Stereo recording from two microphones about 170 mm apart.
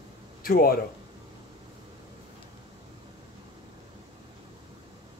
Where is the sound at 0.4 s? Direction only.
60° left (ahead or behind).